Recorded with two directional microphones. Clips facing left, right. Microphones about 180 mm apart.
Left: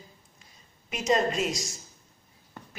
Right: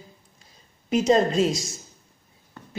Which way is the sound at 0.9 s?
30° right (ahead or behind).